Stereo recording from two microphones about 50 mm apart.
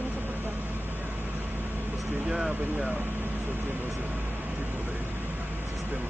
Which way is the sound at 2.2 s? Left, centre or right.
Centre.